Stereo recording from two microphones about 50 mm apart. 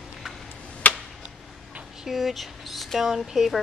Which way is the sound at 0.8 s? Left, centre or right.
Left.